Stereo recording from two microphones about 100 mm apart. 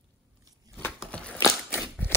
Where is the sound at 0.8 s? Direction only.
20° left (ahead or behind).